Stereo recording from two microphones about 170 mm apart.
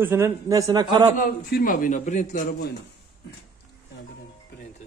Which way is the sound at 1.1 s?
55° left (ahead or behind).